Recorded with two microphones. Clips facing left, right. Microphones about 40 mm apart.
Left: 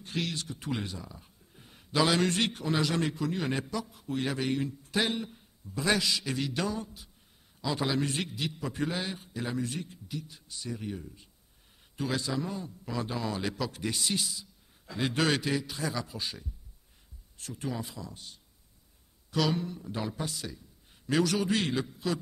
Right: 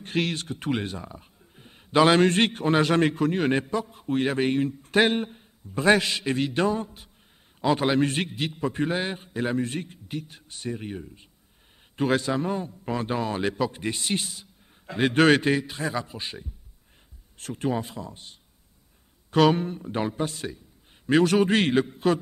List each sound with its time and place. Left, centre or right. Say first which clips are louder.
0.0 s speech: right 7 dB; right
1.9 s a man's voice: right 8 dB; right
17.4 s a man's voice: right 8 dB; right